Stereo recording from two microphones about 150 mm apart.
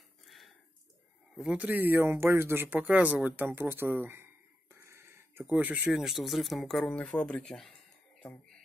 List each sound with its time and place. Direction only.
1.3 s speech: 5° right (ahead or behind)
4.7 s a sound: 15° right (ahead or behind)
5.4 s speech: 10° right (ahead or behind)